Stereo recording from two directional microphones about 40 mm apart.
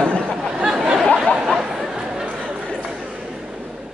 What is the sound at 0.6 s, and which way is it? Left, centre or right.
Chatter, centre.